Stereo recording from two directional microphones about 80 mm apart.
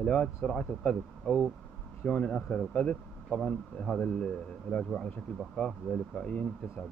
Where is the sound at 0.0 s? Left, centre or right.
Centre.